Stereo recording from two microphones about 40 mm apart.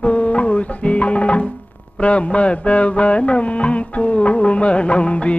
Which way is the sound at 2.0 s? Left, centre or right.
Left.